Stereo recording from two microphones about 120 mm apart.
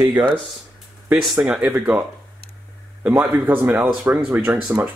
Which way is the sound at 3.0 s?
15° right (ahead or behind).